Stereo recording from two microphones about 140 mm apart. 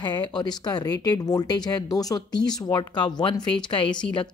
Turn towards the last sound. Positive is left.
turn(degrees=35)  # may be behind; listen again after turning